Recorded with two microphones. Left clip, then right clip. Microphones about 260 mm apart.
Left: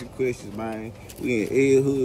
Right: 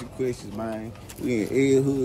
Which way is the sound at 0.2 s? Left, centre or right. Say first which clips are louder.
Left 2 dB; centre.